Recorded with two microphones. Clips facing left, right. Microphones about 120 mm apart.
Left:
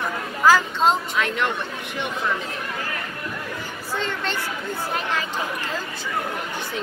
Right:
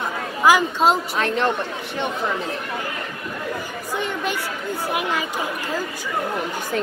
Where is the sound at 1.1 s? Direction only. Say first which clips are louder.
Right 3 dB; 35° right (ahead or behind).